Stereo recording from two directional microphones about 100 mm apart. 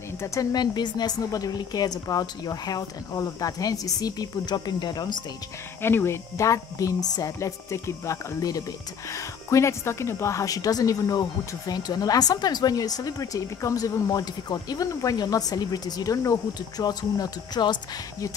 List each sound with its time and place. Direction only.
0.2 s speech: 35° left (ahead or behind)
5.8 s speech: 20° left (ahead or behind); by 17.7 s 45° left (ahead or behind)